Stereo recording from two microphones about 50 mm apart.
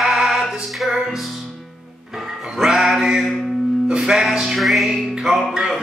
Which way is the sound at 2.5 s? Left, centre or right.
Centre.